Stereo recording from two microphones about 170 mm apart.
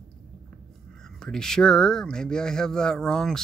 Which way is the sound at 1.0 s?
5° left (ahead or behind).